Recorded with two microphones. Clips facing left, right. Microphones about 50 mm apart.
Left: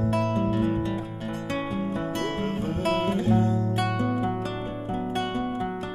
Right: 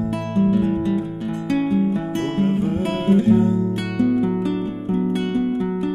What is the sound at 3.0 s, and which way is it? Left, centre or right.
Music, centre.